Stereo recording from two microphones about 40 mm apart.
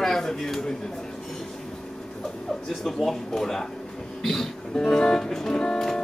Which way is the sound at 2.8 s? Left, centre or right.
Centre.